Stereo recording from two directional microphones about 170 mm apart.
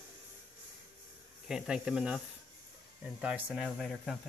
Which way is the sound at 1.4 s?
5° right (ahead or behind).